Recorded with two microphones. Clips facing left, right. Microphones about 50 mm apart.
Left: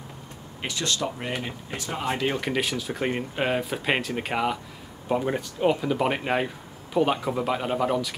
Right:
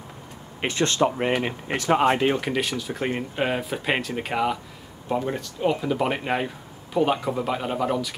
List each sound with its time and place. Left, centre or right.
0.6 s speech: right
1.7 s speech: right
2.4 s speech: centre
5.8 s speech: centre